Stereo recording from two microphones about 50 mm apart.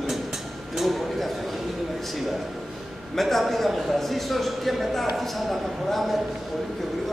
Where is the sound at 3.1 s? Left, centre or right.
Centre.